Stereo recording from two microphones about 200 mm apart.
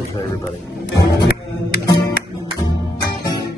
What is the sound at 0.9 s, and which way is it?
Music, 60° left (ahead or behind).